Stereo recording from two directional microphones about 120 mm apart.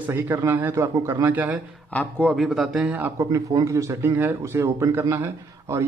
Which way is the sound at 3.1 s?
25° right (ahead or behind).